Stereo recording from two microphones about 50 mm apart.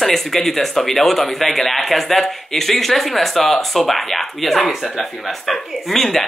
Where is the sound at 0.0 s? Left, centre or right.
Centre.